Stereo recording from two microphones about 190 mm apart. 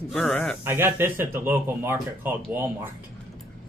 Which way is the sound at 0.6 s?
10° right (ahead or behind).